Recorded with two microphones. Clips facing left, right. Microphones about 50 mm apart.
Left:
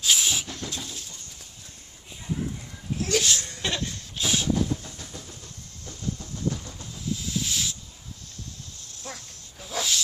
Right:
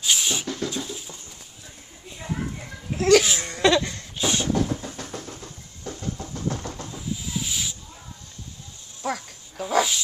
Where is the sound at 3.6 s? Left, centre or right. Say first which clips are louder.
Right 12 dB; right.